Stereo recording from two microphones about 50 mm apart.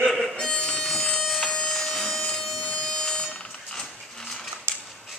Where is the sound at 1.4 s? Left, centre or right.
Centre.